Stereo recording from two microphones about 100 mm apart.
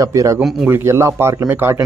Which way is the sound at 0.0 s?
35° right (ahead or behind).